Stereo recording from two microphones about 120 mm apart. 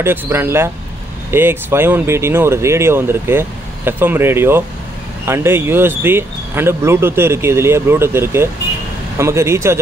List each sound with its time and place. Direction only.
0.0 s speech: 20° right (ahead or behind)